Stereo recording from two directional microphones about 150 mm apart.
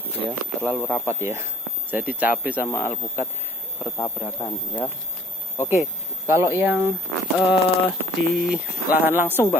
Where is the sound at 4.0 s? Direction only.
35° left (ahead or behind).